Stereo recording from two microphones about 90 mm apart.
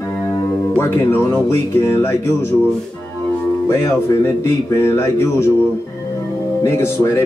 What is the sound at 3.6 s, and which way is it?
Speech, 30° left (ahead or behind).